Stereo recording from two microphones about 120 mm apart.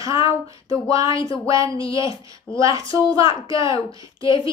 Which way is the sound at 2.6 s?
30° right (ahead or behind).